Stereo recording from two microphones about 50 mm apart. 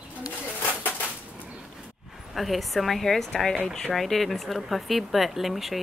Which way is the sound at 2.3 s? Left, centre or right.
Centre.